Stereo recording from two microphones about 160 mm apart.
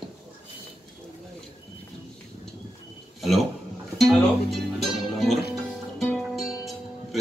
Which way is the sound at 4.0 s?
Centre (ahead or behind).